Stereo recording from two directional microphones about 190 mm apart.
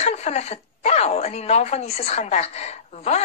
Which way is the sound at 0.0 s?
35° left (ahead or behind).